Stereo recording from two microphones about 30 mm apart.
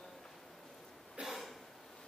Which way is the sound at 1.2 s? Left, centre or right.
Right.